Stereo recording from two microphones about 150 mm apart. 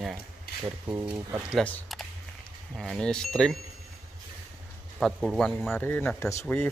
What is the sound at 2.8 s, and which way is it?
Speech, 5° left (ahead or behind).